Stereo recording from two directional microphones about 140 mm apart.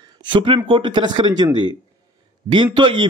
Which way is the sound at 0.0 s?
35° right (ahead or behind).